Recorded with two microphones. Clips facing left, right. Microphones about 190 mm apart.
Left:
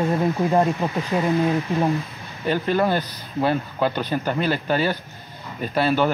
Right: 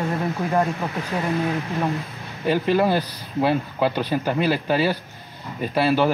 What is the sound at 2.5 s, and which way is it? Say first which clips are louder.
Speech: right 1 dB; 5° right (ahead or behind).